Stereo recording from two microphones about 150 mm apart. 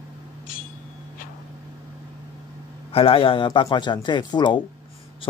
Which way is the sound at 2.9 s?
40° left (ahead or behind).